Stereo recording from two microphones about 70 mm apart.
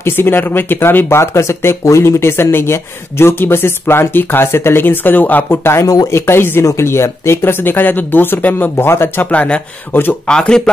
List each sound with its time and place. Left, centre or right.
0.0 s speech: left
6.6 s speech: left
9.3 s speech: left
10.2 s speech: centre